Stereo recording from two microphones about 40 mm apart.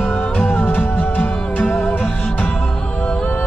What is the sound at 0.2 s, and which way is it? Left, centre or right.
Music, left.